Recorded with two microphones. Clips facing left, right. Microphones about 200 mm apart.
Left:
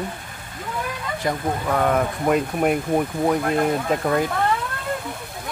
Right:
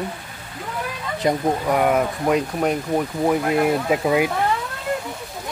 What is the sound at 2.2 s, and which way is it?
Speech, 5° left (ahead or behind).